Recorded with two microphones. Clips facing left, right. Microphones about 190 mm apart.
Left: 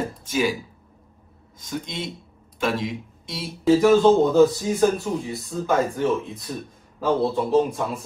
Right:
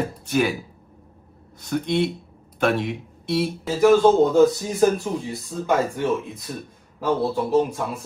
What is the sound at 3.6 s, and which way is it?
Speech, centre (ahead or behind).